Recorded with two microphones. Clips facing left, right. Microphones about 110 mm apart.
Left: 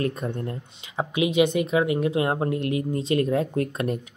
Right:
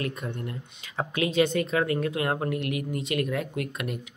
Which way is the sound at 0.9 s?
15° left (ahead or behind).